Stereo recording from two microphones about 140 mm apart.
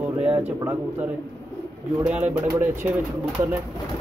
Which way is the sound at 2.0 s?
10° right (ahead or behind).